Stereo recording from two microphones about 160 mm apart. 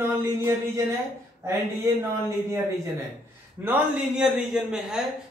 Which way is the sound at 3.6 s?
5° right (ahead or behind).